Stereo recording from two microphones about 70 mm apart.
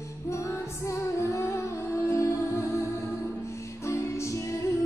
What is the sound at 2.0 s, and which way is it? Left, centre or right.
Music, left.